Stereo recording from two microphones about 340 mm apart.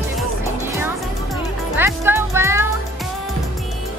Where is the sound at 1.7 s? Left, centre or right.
Centre.